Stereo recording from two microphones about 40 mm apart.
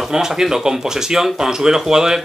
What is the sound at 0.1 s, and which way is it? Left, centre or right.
A man's voice, centre.